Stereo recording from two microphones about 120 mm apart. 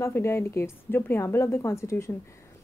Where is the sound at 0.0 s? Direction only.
20° left (ahead or behind).